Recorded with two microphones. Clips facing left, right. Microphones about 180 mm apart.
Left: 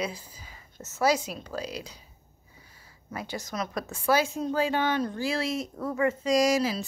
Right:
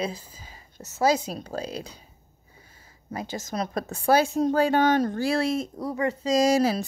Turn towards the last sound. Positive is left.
turn(degrees=-40)  # may be behind; listen again after turning